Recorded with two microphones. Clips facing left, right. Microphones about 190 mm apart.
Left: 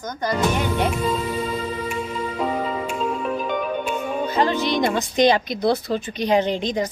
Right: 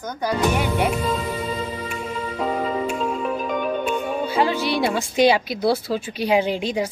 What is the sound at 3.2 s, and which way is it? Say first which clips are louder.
Music: even; centre (ahead or behind).